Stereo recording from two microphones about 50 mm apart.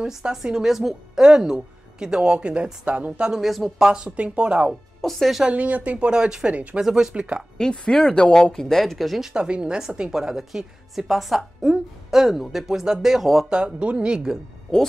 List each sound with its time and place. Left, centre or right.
0.0 s a woman's voice: centre
3.3 s speech: centre
3.8 s speech: centre
5.0 s speech: centre
5.5 s speech: right
6.5 s speech: right
6.8 s a woman's voice: centre
7.5 s speech: centre
9.3 s a woman's voice: centre
13.2 s speech: centre
13.5 s a woman's voice: centre